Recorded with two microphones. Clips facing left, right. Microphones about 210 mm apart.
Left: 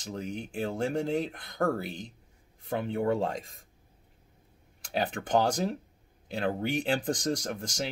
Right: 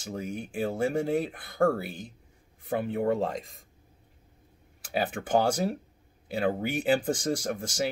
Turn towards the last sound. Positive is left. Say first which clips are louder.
# right 3 dB
turn(degrees=-5)  # may be behind; listen again after turning